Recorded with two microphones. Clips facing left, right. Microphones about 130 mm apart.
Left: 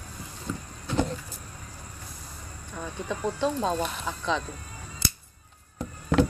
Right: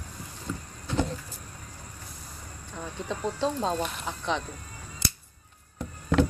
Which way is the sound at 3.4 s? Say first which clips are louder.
Left 1 dB; 30° right (ahead or behind).